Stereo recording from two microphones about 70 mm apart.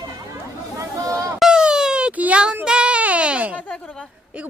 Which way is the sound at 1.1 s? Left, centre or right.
Right.